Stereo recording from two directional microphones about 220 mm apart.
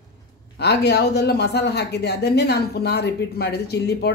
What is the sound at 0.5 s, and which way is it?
Speech, 50° left (ahead or behind).